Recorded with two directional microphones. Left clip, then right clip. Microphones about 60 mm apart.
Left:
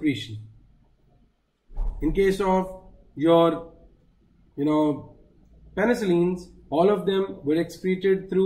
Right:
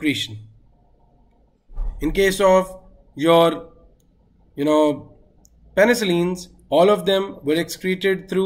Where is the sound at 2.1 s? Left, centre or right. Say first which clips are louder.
Right 6 dB; right.